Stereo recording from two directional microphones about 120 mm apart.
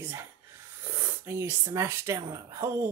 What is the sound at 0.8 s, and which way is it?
Speech, 20° right (ahead or behind).